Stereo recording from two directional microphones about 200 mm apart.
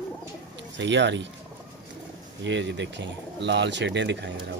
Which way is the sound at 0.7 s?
65° right (ahead or behind).